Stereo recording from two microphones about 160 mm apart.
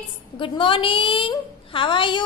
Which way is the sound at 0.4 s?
30° left (ahead or behind).